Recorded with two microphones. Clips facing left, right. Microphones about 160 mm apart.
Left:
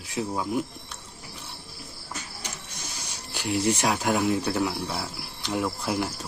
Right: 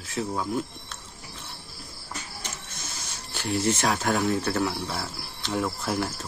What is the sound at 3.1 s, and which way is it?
Speech, 15° left (ahead or behind).